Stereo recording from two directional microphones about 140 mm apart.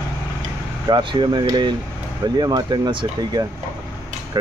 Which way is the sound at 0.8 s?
30° right (ahead or behind).